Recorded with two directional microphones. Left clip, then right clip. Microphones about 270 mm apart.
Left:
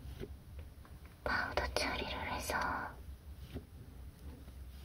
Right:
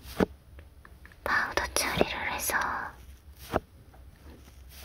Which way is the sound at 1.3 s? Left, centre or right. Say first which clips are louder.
Right 8 dB; right.